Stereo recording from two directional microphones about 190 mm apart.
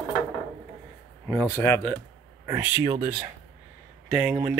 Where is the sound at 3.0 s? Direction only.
30° right (ahead or behind).